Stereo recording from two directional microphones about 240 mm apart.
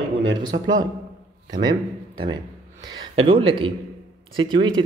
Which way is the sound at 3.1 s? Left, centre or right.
Right.